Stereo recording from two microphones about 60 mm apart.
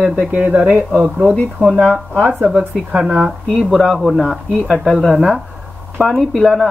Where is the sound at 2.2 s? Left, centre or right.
Right.